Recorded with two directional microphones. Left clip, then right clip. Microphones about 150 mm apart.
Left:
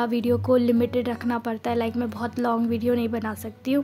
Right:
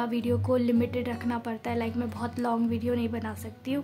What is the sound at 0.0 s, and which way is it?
A woman's voice, 30° left (ahead or behind).